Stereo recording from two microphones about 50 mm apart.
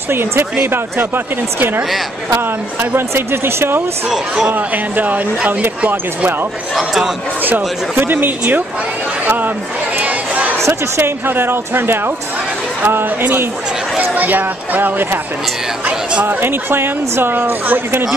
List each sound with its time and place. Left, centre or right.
0.1 s a woman's voice: right
3.2 s a woman's voice: right
4.5 s speech: right
6.7 s a man's voice: centre
7.4 s speech: right
9.9 s a sound: right
10.7 s a woman's voice: right
16.3 s a woman's voice: right